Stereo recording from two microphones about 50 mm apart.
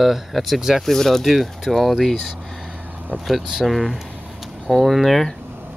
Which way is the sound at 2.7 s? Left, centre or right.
Right.